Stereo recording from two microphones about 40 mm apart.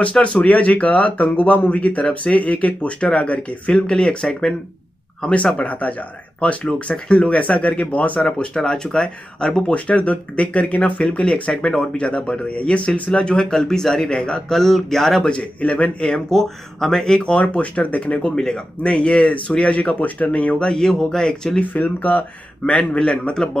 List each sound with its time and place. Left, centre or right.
0.0 s speech: left
3.7 s speech: centre
5.3 s speech: left
6.6 s speech: left
8.5 s speech: centre
9.6 s speech: left; by 14.1 s centre
14.1 s speech: left
14.5 s speech: centre
15.2 s speech: left
16.3 s speech: centre
17.2 s speech: left
20.2 s speech: left; by 21.5 s centre
21.5 s speech: left
23.3 s speech: centre